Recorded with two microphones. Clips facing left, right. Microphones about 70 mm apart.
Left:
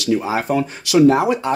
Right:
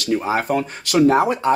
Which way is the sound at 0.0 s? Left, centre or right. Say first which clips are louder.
Left 1 dB; right.